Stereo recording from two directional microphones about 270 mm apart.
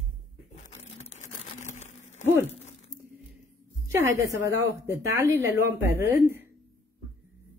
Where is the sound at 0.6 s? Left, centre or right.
Left.